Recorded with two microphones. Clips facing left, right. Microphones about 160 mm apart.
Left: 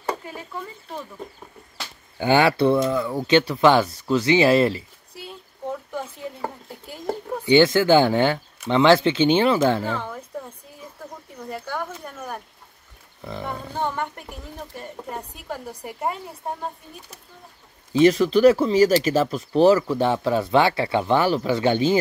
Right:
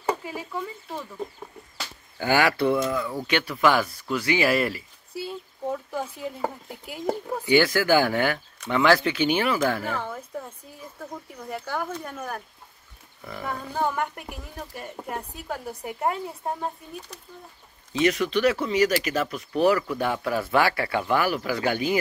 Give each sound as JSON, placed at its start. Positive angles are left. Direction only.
{"t": 0.2, "sound": "speech", "side_deg": -10}
{"t": 2.1, "sound": "speech", "side_deg": 25}
{"t": 5.1, "sound": "a sound", "side_deg": -5}
{"t": 7.4, "sound": "speech", "side_deg": 25}
{"t": 11.5, "sound": "speech", "side_deg": 0}
{"t": 13.4, "sound": "speech", "side_deg": -5}
{"t": 17.9, "sound": "speech", "side_deg": 30}